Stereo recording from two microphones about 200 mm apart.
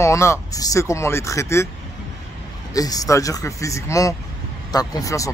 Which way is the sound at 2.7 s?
20° left (ahead or behind).